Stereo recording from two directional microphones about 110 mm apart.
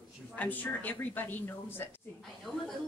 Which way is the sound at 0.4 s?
15° left (ahead or behind).